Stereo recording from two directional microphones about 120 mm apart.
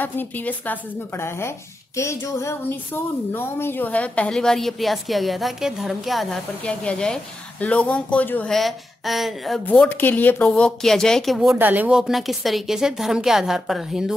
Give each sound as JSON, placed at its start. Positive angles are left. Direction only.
{"t": 0.0, "sound": "a woman's voice", "side_deg": 15}
{"t": 6.6, "sound": "speech", "side_deg": 10}
{"t": 8.5, "sound": "a woman's voice", "side_deg": 0}
{"t": 9.7, "sound": "speech", "side_deg": 15}
{"t": 11.5, "sound": "speech", "side_deg": -15}
{"t": 12.0, "sound": "a woman's voice", "side_deg": 0}